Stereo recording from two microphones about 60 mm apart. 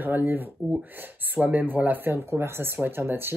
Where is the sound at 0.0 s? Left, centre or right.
Right.